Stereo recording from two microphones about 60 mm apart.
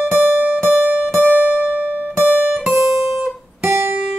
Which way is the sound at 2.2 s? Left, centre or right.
Right.